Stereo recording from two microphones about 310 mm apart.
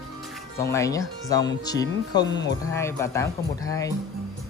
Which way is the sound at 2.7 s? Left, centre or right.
Centre.